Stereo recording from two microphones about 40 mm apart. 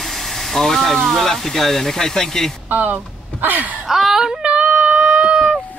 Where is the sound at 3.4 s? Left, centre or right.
Right.